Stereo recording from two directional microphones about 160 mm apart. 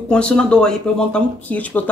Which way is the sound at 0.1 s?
5° left (ahead or behind).